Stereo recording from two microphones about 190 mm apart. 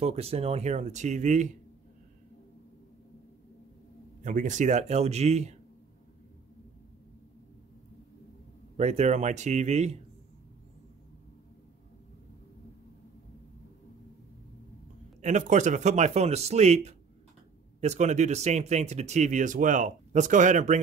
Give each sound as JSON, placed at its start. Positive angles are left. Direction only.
{"t": 0.0, "sound": "speech", "side_deg": -30}
{"t": 4.2, "sound": "speech", "side_deg": -40}
{"t": 8.7, "sound": "speech", "side_deg": -35}
{"t": 15.2, "sound": "speech", "side_deg": -40}